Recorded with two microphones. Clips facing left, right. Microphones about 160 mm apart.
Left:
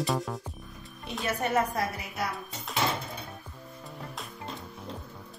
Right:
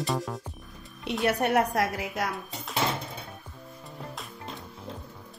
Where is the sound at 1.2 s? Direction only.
70° right (ahead or behind); by 2.3 s 90° right.